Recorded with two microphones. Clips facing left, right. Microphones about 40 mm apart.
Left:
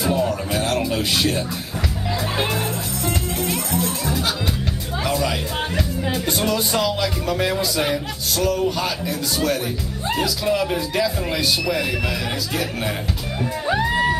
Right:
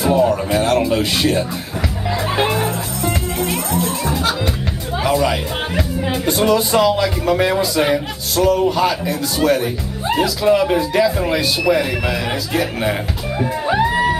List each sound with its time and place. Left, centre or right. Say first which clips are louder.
0.0 s speech: right 6 dB; centre
2.0 s music: right 5 dB; centre
5.0 s speech: right 6 dB; centre
13.4 s music: right 5 dB; right